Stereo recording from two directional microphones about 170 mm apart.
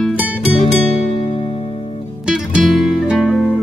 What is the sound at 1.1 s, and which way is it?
Music, 35° left (ahead or behind).